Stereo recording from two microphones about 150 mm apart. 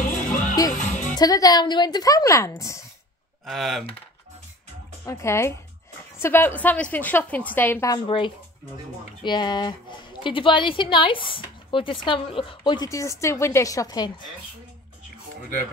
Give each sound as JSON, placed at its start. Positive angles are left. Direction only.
{"t": 0.0, "sound": "music", "side_deg": 60}
{"t": 1.1, "sound": "speech", "side_deg": 25}
{"t": 3.4, "sound": "speech", "side_deg": 0}
{"t": 5.0, "sound": "a woman's voice", "side_deg": 20}
{"t": 7.9, "sound": "a woman's voice", "side_deg": 35}